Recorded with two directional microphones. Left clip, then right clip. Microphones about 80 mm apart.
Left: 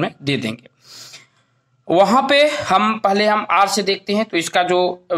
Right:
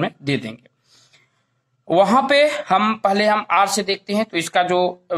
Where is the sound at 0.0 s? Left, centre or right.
Left.